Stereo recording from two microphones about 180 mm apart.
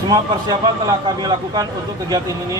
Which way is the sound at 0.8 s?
20° right (ahead or behind).